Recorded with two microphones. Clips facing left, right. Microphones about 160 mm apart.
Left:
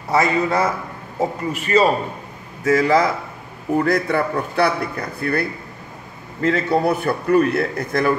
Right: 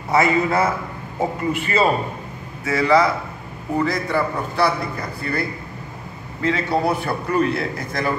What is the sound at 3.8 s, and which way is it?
A man's voice, 55° left (ahead or behind).